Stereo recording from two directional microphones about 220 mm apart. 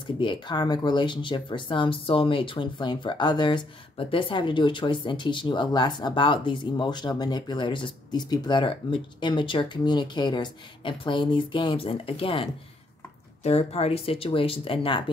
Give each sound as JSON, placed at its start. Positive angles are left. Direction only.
{"t": 0.2, "sound": "speech", "side_deg": 20}